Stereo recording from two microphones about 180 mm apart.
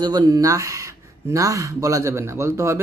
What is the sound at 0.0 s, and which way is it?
A man's voice, 20° right (ahead or behind).